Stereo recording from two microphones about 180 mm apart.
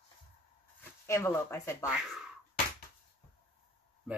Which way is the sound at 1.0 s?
15° left (ahead or behind).